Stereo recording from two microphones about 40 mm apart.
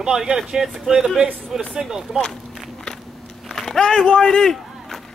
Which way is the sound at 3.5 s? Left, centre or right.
Centre.